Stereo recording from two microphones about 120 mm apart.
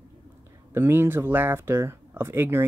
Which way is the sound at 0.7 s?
20° right (ahead or behind).